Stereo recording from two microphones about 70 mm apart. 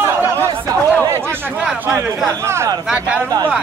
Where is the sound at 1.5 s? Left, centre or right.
Right.